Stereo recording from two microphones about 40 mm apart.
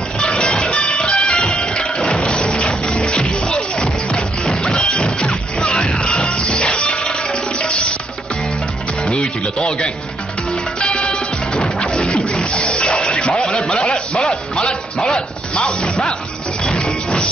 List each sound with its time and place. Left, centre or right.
0.2 s music: left
9.0 s music: left
11.0 s music: left